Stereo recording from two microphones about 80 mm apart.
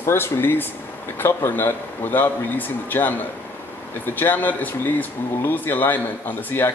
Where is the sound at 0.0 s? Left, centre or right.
Left.